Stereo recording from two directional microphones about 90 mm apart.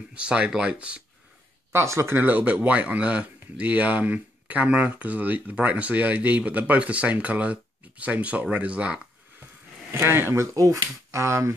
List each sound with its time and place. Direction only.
0.1 s speech: 10° right (ahead or behind)
1.7 s speech: 30° right (ahead or behind); by 9.0 s 15° right (ahead or behind)
9.8 s speech: 25° right (ahead or behind)
10.4 s speech: 35° right (ahead or behind)